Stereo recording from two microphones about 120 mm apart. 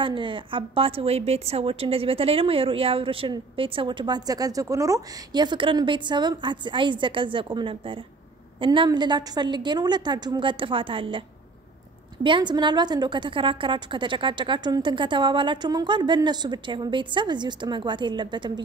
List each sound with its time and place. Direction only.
0.0 s a woman's voice: 45° right (ahead or behind)